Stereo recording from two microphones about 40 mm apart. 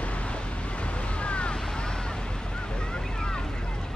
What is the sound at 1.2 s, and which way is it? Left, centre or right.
Vehicle, left.